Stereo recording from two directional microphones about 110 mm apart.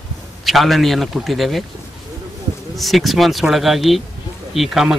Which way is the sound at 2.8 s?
Centre (ahead or behind).